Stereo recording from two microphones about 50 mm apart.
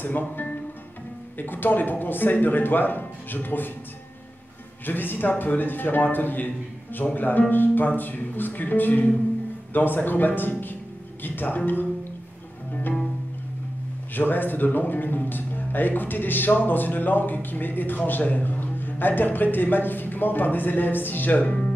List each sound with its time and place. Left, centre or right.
0.0 s speech: left
4.8 s speech: left
14.1 s speech: left